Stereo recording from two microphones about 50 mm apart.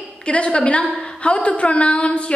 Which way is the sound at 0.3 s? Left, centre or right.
Left.